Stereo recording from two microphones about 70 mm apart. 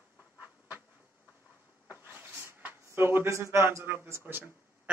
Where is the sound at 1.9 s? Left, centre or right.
Right.